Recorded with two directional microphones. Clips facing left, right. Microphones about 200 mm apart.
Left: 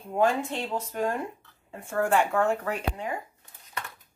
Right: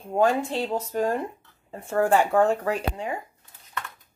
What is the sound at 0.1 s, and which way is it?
Speech, 35° right (ahead or behind).